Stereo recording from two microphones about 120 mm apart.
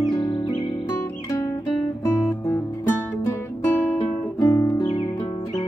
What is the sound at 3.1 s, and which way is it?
Music, 20° left (ahead or behind).